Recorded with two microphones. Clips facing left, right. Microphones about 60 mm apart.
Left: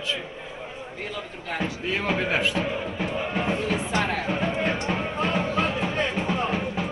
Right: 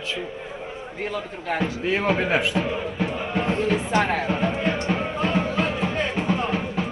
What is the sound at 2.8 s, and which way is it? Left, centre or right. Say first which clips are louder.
Music: right 1 dB; right.